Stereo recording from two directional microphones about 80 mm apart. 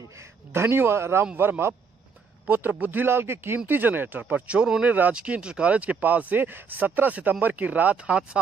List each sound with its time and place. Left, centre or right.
0.5 s speech: right
1.2 s a man's voice: right